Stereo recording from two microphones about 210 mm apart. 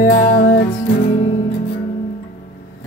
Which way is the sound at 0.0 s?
40° left (ahead or behind).